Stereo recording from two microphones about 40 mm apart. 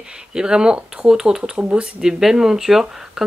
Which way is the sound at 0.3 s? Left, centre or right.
Centre.